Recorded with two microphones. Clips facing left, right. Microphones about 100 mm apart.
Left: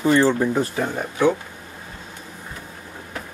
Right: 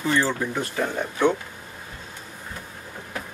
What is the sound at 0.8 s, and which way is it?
Speech, 10° left (ahead or behind).